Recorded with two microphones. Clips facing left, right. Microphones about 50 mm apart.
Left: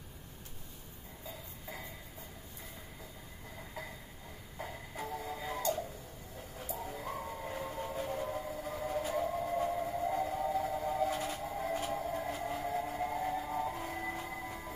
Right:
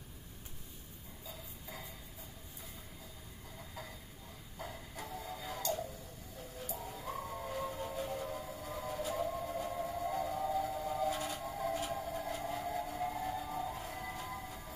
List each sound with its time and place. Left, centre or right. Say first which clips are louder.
4.6 s music: left 3 dB; left
6.8 s train: left 3 dB; left
9.0 s a sound: even; left
10.1 s music: left 2 dB; left
10.5 s a sound: left 2 dB; left
13.0 s train: left 3 dB; left